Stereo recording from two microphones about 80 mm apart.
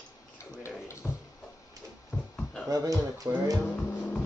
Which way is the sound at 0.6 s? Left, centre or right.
Left.